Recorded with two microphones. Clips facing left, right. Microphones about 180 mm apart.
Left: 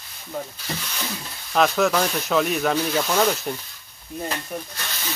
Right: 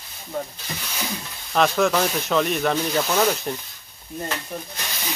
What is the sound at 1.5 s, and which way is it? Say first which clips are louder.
Speech: even; centre (ahead or behind).